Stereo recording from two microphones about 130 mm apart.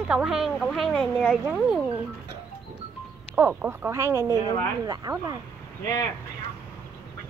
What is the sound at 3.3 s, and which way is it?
Speech, 15° right (ahead or behind).